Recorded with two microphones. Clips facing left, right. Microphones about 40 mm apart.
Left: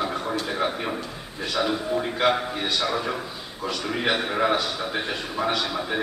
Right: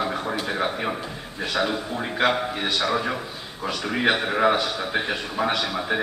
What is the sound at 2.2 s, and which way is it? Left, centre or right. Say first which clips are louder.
A man's voice: right 3 dB; centre.